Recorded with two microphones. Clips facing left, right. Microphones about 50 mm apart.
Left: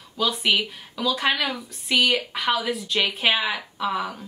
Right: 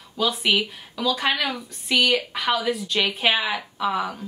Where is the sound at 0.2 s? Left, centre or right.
Centre.